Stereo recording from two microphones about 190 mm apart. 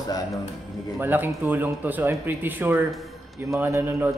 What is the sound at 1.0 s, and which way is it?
Speech, 10° right (ahead or behind).